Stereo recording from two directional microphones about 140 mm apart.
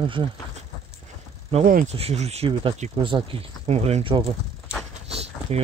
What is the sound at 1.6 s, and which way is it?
Speech, 80° right.